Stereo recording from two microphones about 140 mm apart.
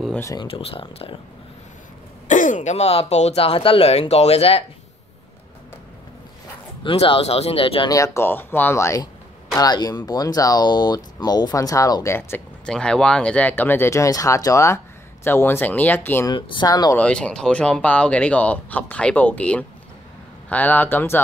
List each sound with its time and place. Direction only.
0.2 s speech: 25° left (ahead or behind)
0.5 s speech: 45° left (ahead or behind)
2.2 s speech: 65° left (ahead or behind); by 4.6 s 45° left (ahead or behind)
6.8 s speech: 40° left (ahead or behind)
7.9 s speech: 20° left (ahead or behind)
12.6 s speech: 5° left (ahead or behind)
16.3 s speech: 30° left (ahead or behind)
16.9 s speech: 10° left (ahead or behind)